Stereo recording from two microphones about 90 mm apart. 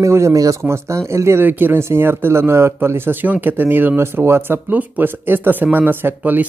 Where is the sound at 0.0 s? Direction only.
35° right (ahead or behind).